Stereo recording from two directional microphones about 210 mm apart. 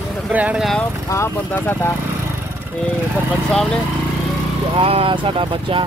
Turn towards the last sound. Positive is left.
turn(degrees=-25)  # may be behind; listen again after turning